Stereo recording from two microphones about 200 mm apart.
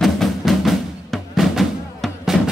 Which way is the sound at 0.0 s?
Centre (ahead or behind).